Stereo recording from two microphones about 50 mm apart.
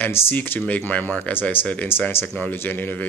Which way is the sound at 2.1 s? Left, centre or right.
Left.